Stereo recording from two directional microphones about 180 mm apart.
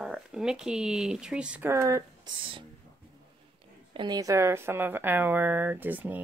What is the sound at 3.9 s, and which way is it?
Speech, 20° right (ahead or behind).